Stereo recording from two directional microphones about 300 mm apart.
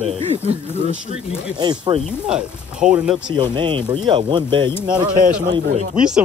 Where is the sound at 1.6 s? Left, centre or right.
Centre.